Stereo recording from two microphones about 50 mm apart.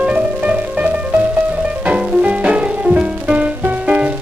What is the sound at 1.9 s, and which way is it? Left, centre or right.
Music, right.